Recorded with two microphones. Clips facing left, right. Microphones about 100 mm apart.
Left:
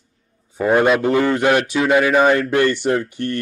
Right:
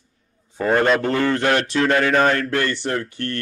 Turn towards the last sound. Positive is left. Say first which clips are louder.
# left 4 dB
turn(degrees=15)  # may be behind; listen again after turning